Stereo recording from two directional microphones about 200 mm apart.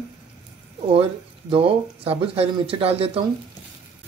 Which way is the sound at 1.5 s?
25° right (ahead or behind).